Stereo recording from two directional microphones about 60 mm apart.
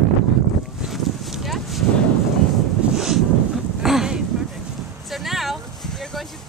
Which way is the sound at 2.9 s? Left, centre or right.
Centre.